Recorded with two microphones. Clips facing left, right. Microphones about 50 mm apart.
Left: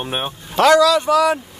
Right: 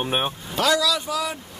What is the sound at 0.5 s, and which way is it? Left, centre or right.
Speech, left.